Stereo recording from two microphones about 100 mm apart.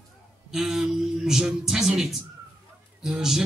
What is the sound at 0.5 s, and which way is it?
A man's voice, 5° right (ahead or behind).